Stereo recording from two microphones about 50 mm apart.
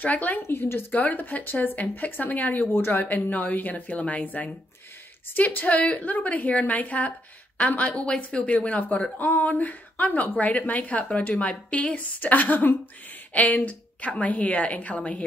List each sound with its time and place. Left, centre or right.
0.0 s a woman's voice: left
0.4 s a woman's voice: left